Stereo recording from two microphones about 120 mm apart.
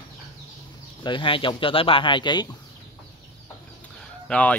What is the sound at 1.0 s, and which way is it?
Speech, 45° left (ahead or behind).